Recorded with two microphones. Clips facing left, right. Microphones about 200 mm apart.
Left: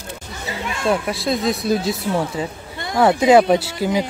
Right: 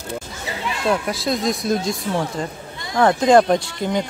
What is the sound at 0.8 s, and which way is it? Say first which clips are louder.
Speech: left 1 dB; centre (ahead or behind).